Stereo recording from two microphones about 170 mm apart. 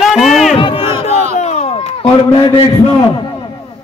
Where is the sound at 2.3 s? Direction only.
30° left (ahead or behind).